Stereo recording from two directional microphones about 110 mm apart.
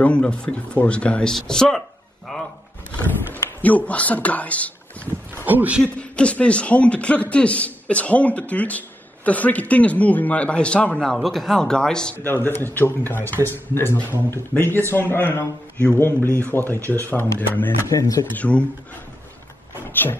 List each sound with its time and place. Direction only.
0.0 s a man's voice: 10° left (ahead or behind)
3.3 s speech: 20° left (ahead or behind)
5.3 s speech: 15° right (ahead or behind)
5.9 s a man's voice: 10° left (ahead or behind)
12.2 s speech: 20° left (ahead or behind)
17.8 s speech: 30° left (ahead or behind)
18.3 s a man's voice: 15° left (ahead or behind)
19.9 s a sound: 20° left (ahead or behind)